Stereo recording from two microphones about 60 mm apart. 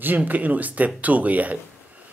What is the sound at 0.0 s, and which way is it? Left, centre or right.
Speech, right.